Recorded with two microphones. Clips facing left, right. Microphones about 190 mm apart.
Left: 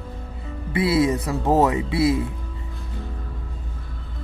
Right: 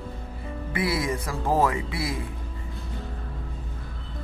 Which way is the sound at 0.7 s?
25° left (ahead or behind).